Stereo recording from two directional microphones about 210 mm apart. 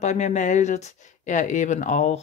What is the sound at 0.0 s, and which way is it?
Speech, 35° left (ahead or behind).